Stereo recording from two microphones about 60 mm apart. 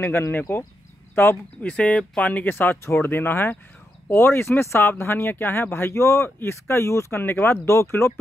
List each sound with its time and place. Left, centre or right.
0.0 s speech: left
1.6 s speech: left
2.5 s speech: left